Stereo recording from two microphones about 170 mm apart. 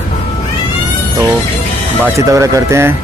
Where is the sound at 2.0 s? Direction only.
15° right (ahead or behind).